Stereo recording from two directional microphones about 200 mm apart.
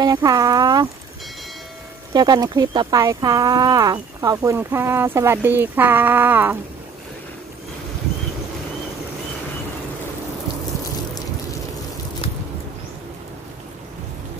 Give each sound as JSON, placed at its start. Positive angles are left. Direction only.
{"t": 0.0, "sound": "speech", "side_deg": -20}
{"t": 2.1, "sound": "speech", "side_deg": -20}